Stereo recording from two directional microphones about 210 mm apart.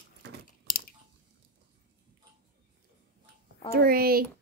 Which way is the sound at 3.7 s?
45° right (ahead or behind).